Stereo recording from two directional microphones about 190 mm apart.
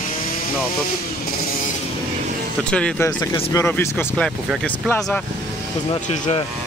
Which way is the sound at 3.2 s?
20° left (ahead or behind).